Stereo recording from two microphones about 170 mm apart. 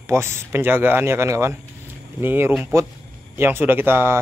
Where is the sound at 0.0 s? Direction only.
15° right (ahead or behind).